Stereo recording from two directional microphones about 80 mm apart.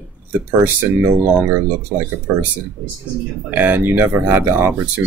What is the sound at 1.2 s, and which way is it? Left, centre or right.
Speech, right.